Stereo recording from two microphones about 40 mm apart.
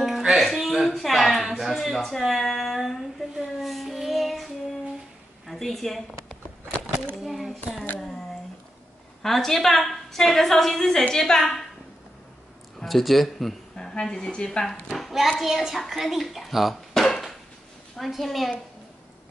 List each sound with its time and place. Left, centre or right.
0.4 s a sound: centre
2.1 s child singing: centre
5.5 s a woman's voice: centre
9.2 s a woman's voice: centre
12.7 s speech: centre
13.7 s a woman's voice: centre
15.0 s hands: centre
15.4 s a child's voice: centre
16.9 s a sound: centre
17.9 s a child's voice: centre